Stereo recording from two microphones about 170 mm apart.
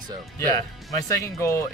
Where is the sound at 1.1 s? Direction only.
15° left (ahead or behind).